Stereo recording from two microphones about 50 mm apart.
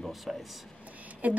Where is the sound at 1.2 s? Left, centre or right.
Right.